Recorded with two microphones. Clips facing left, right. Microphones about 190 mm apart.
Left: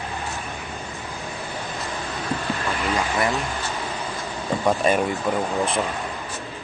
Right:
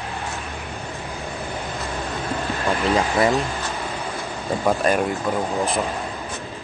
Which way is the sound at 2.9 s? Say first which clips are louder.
Right 4 dB; 35° right (ahead or behind).